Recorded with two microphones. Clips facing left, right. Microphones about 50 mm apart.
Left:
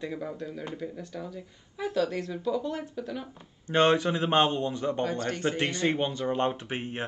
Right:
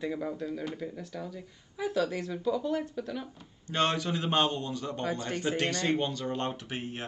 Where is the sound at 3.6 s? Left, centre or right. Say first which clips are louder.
Left 6 dB; left.